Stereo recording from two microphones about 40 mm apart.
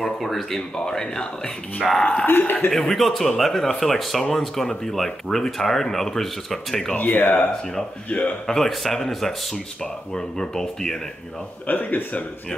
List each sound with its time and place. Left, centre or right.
0.0 s speech: centre
0.6 s speech: centre
1.8 s speech: centre
2.2 s a man's voice: left
2.7 s speech: centre
7.0 s speech: left
8.1 s speech: left
8.5 s speech: centre
11.6 s speech: left